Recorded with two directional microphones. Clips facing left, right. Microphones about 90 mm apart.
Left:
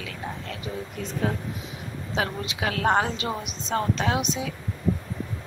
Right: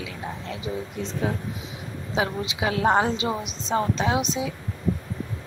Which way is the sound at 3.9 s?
30° right (ahead or behind).